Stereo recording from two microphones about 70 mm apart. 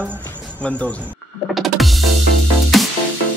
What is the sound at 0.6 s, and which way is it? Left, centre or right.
Speech, centre.